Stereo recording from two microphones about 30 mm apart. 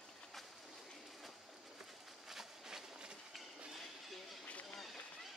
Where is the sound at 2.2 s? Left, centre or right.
Centre.